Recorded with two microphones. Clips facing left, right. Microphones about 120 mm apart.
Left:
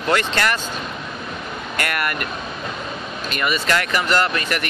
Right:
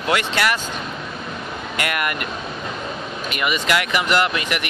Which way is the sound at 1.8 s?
15° right (ahead or behind).